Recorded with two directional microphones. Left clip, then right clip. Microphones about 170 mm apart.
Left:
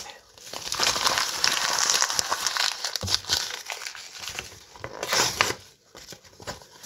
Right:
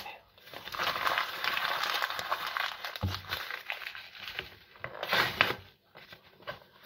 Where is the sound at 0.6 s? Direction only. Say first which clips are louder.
Left 7 dB; 40° left (ahead or behind); by 4.9 s 70° left (ahead or behind).